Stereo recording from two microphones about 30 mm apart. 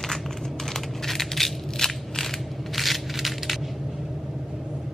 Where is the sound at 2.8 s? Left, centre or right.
Centre.